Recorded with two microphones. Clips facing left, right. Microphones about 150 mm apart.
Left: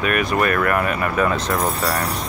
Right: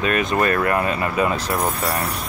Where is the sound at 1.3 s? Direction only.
35° right (ahead or behind).